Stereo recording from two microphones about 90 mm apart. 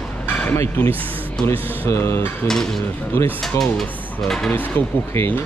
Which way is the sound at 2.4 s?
5° left (ahead or behind).